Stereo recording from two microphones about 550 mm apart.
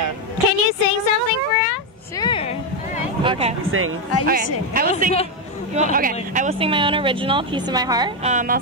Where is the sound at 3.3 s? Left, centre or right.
Centre.